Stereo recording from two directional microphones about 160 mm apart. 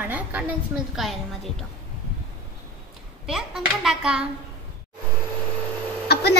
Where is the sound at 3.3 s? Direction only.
5° right (ahead or behind).